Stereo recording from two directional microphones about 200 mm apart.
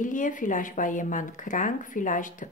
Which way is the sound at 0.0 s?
40° left (ahead or behind).